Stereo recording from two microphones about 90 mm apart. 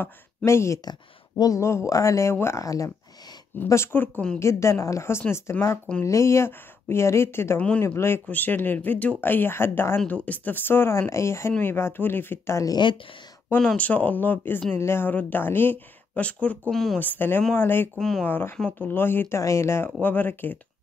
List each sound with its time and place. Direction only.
0.5 s speech: 30° left (ahead or behind)
12.7 s speech: 60° left (ahead or behind)
13.6 s speech: 15° left (ahead or behind)
16.7 s speech: 5° left (ahead or behind)
17.0 s speech: 25° left (ahead or behind)
17.9 s speech: 5° left (ahead or behind)
18.2 s speech: 25° left (ahead or behind)